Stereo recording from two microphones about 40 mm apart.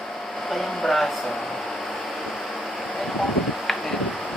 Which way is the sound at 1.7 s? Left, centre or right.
Left.